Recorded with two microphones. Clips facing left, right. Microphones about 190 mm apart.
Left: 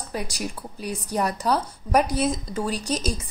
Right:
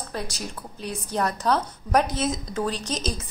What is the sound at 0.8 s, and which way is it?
A woman's voice, 10° left (ahead or behind).